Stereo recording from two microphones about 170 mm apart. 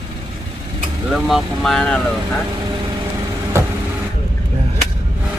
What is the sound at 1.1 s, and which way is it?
Speech, centre (ahead or behind).